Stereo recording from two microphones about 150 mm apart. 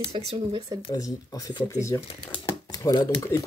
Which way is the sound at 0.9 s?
25° left (ahead or behind).